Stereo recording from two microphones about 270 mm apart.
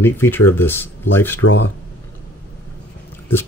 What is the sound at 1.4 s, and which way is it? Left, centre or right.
Speech, left.